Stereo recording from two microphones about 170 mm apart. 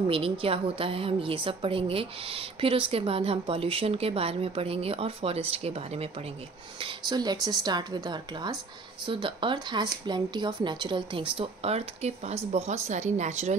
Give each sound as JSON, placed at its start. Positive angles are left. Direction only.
{"t": 0.0, "sound": "a woman's voice", "side_deg": -30}